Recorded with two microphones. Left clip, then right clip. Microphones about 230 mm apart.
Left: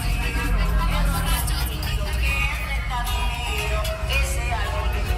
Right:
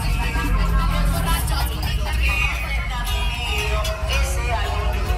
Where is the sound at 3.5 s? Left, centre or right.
Centre.